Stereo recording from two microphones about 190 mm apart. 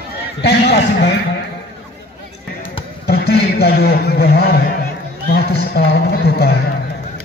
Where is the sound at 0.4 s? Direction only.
60° left (ahead or behind).